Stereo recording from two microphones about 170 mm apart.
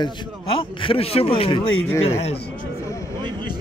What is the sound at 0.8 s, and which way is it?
Speech, 35° left (ahead or behind).